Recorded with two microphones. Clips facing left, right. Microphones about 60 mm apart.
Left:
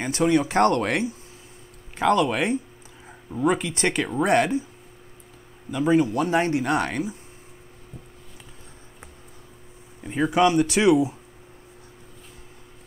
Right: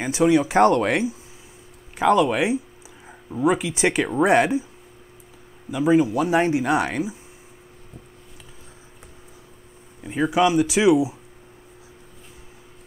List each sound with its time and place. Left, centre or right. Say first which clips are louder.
0.0 s speech: right 3 dB; centre
5.7 s speech: right 2 dB; centre
10.0 s speech: even; centre